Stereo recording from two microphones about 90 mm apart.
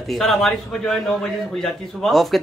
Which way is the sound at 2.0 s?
Centre (ahead or behind).